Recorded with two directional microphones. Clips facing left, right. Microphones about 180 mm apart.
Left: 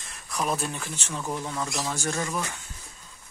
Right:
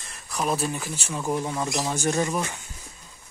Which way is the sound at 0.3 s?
Centre (ahead or behind).